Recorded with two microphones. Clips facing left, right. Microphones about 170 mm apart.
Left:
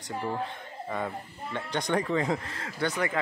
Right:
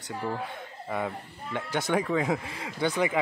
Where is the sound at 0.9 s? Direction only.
10° right (ahead or behind).